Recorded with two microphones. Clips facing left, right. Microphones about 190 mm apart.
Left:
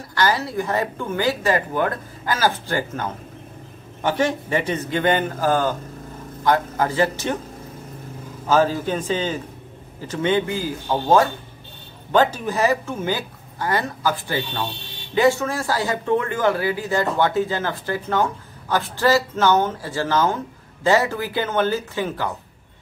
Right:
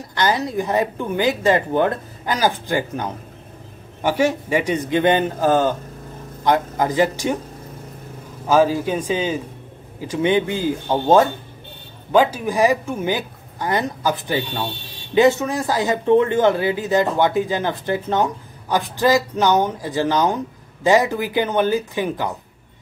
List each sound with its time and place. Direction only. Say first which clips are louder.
0.0 s speech: right 1 dB; 20° right (ahead or behind)
8.5 s speech: right 2 dB; 10° right (ahead or behind)
12.1 s speech: right 2 dB; 10° right (ahead or behind)